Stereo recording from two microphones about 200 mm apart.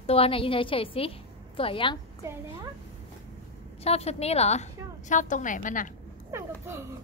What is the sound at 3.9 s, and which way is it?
A woman's voice, 30° left (ahead or behind).